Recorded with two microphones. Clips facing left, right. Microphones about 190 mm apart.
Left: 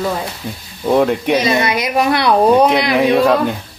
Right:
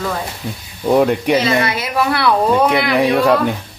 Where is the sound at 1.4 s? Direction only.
15° left (ahead or behind).